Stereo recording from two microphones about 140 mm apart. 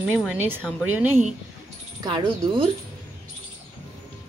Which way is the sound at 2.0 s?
35° right (ahead or behind).